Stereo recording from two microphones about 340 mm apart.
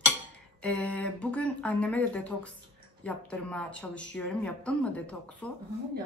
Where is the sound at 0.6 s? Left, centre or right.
Centre.